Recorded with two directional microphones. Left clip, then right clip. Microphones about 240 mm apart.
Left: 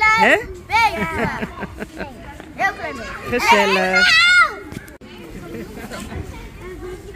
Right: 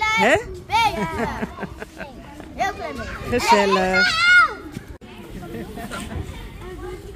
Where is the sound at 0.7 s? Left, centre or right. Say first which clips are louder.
Left 3 dB; right.